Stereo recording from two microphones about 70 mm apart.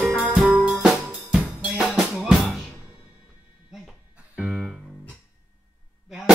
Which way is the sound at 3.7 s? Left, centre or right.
Centre.